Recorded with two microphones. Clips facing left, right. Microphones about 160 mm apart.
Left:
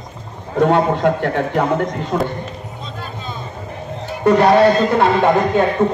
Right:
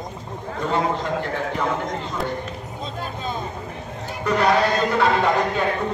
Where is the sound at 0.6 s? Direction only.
65° left (ahead or behind).